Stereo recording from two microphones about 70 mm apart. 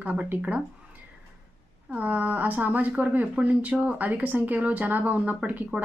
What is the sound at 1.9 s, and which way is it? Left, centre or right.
Speech, right.